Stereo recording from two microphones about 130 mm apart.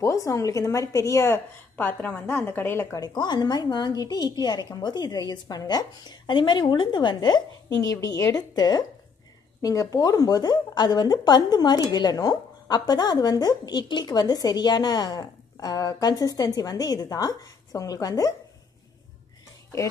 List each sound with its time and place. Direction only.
0.0 s a woman's voice: 25° left (ahead or behind)
3.0 s a woman's voice: 35° left (ahead or behind)